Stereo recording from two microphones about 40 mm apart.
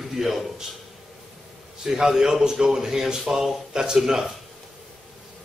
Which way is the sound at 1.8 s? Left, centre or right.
Centre.